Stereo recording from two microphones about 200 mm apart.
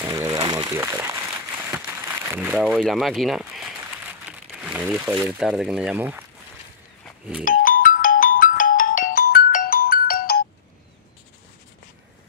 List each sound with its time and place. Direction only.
0.0 s a sound: 15° right (ahead or behind)
2.6 s speech: centre (ahead or behind)
7.4 s ringtone: 45° left (ahead or behind)